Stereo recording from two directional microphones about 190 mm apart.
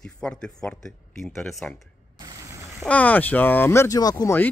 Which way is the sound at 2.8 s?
10° left (ahead or behind).